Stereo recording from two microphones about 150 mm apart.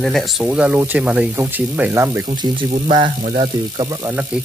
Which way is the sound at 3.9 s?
20° right (ahead or behind).